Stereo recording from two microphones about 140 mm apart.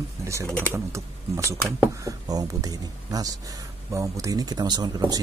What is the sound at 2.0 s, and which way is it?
Speech, 25° right (ahead or behind).